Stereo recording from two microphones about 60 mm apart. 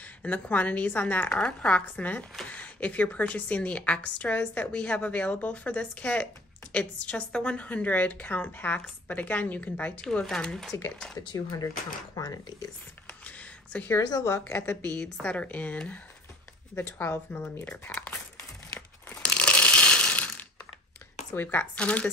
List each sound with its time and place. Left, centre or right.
0.0 s a woman's voice: left
10.0 s speech: centre
11.1 s speech: left
12.2 s speech: left
13.2 s a sound: left
13.9 s speech: left
14.5 s speech: left
15.0 s a woman's voice: centre
16.7 s speech: left
19.2 s a sound: left
21.4 s a woman's voice: left